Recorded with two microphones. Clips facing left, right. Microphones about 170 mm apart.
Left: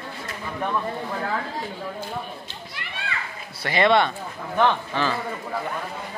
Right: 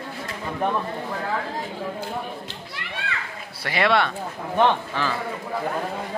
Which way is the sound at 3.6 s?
5° right (ahead or behind).